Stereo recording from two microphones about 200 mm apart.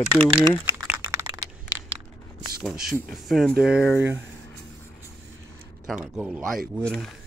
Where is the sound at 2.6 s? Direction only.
Centre (ahead or behind).